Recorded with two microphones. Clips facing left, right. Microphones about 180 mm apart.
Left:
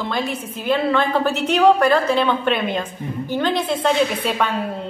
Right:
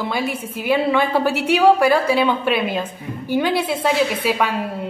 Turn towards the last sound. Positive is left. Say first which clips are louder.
# right 1 dB
turn(degrees=-10)  # may be behind; listen again after turning